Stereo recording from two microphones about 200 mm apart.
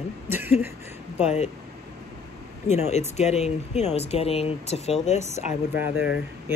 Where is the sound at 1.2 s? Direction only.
35° left (ahead or behind).